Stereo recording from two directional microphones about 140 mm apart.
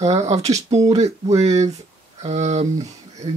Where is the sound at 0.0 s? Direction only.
50° right (ahead or behind).